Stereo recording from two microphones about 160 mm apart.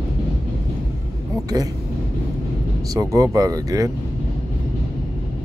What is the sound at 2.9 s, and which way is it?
Speech, 20° right (ahead or behind).